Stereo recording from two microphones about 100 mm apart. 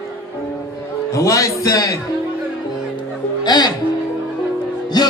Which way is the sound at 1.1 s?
30° left (ahead or behind).